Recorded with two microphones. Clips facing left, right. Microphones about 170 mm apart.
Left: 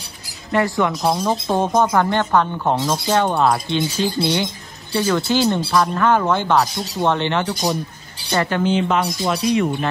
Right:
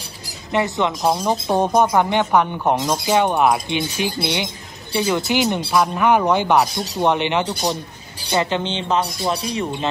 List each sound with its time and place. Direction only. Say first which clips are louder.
0.5 s speech: left 1 dB; 20° right (ahead or behind)